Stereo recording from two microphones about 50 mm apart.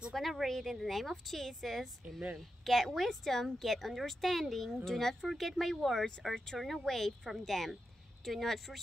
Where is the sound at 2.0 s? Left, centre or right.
Right.